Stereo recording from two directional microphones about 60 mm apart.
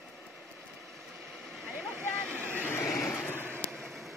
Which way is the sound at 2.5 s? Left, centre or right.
Left.